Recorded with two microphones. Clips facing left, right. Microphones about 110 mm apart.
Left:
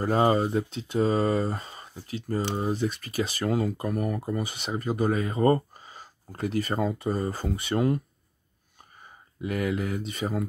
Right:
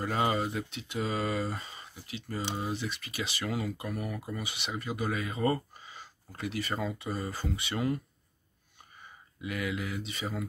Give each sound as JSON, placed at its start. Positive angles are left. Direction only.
{"t": 0.0, "sound": "speech", "side_deg": 35}
{"t": 9.4, "sound": "speech", "side_deg": 40}